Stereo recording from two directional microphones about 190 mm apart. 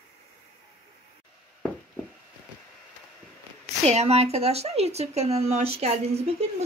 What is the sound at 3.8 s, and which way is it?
Speech, 35° right (ahead or behind).